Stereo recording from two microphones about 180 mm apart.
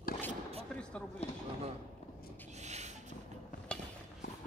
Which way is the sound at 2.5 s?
40° right (ahead or behind).